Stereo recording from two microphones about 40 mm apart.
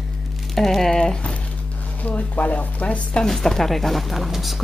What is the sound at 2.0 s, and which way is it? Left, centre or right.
Speech, left.